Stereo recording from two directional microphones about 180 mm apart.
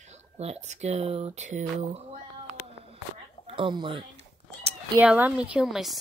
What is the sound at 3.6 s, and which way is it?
Speech, 30° right (ahead or behind).